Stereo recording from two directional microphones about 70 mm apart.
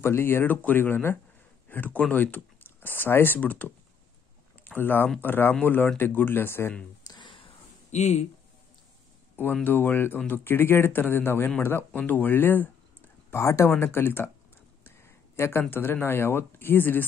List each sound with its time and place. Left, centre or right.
0.0 s speech: left
9.4 s speech: left
12.0 s a sound: left
13.4 s speech: left
13.7 s speech: left
15.0 s a sound: left
15.7 s speech: left